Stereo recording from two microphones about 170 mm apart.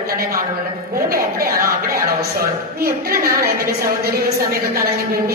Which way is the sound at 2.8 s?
60° right (ahead or behind).